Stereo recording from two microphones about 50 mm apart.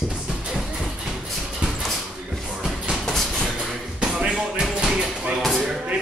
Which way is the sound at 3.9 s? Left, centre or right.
Centre.